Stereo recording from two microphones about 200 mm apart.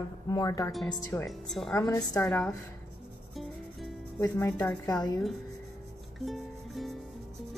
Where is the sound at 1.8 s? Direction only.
15° left (ahead or behind).